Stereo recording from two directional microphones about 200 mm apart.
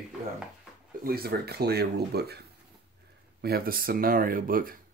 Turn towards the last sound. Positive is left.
turn(degrees=-45)  # may be behind; listen again after turning